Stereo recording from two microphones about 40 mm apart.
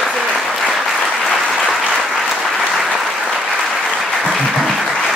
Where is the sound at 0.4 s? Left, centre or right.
Centre.